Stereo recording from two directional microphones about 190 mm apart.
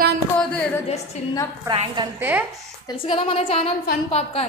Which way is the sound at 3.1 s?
30° left (ahead or behind).